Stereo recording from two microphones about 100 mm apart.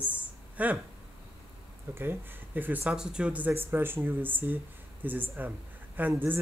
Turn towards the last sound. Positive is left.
turn(degrees=-20)  # may be behind; listen again after turning